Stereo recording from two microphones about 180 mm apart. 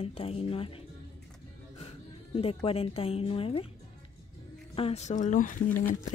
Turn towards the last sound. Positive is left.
turn(degrees=45)  # may be behind; listen again after turning